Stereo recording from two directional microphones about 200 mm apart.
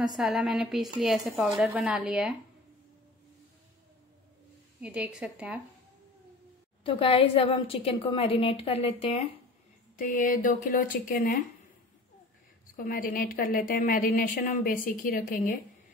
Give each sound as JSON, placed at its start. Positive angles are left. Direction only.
{"t": 0.0, "sound": "speech", "side_deg": 0}
{"t": 4.7, "sound": "speech", "side_deg": -5}
{"t": 6.8, "sound": "a woman's voice", "side_deg": 25}
{"t": 9.9, "sound": "a woman's voice", "side_deg": 40}
{"t": 12.7, "sound": "a woman's voice", "side_deg": 45}